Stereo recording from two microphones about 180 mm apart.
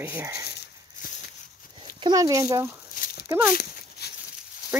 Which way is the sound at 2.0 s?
20° right (ahead or behind).